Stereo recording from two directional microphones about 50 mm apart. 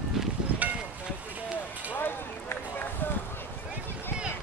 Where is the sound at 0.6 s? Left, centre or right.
Right.